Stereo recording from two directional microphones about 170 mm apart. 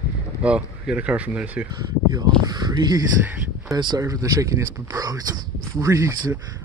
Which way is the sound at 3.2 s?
10° right (ahead or behind).